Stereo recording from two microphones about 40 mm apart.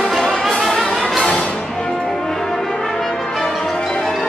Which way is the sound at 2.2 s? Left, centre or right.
Centre.